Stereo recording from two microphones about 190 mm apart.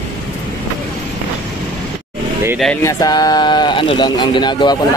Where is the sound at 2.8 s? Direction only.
15° left (ahead or behind).